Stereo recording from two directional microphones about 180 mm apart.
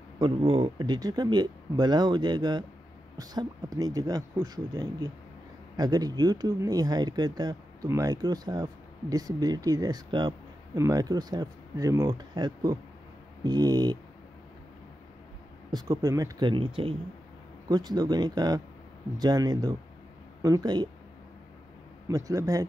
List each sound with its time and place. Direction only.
0.2 s speech: 30° right (ahead or behind)
15.7 s speech: 20° right (ahead or behind)
22.0 s speech: 15° right (ahead or behind)